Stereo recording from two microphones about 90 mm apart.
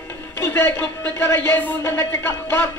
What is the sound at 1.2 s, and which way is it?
Music, 25° left (ahead or behind).